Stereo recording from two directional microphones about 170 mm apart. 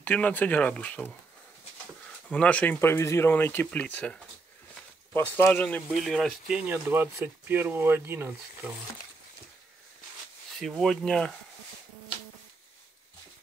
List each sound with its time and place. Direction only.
0.0 s speech: 10° left (ahead or behind)
2.2 s speech: 5° left (ahead or behind)
6.7 s speech: 10° right (ahead or behind)
10.6 s speech: centre (ahead or behind)